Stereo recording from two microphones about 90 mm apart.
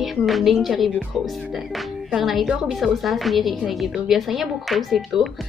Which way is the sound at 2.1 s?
5° right (ahead or behind).